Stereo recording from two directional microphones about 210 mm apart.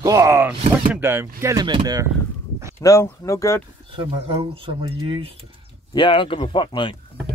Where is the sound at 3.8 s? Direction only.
25° right (ahead or behind).